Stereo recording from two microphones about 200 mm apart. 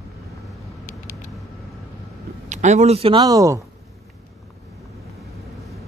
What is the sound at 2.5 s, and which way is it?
Speech, 35° right (ahead or behind).